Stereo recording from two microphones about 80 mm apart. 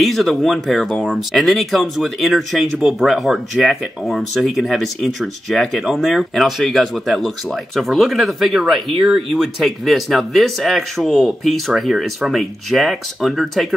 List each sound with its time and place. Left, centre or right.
0.0 s speech: centre